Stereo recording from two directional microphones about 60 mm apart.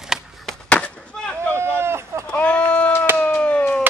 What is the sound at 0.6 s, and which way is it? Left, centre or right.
Chop, left.